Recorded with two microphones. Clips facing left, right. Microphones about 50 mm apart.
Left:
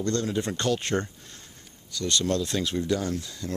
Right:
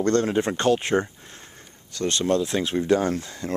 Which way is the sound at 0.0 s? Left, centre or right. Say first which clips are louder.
Right 6 dB; right.